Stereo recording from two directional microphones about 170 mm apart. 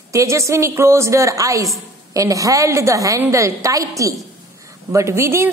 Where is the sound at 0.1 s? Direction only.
20° right (ahead or behind).